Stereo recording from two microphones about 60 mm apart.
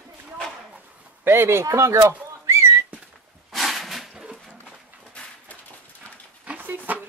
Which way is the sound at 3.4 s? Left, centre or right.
Centre.